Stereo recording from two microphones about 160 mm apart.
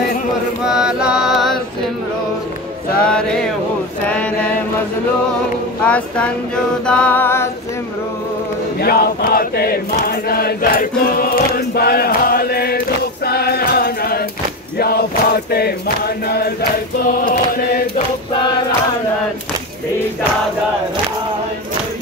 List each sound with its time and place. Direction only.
0.7 s mantra: 5° right (ahead or behind)
3.0 s mantra: 5° left (ahead or behind)
5.9 s a sound: 10° left (ahead or behind)
8.8 s chant: 75° left (ahead or behind)
14.8 s a sound: 75° left (ahead or behind)
17.2 s chant: 60° left (ahead or behind)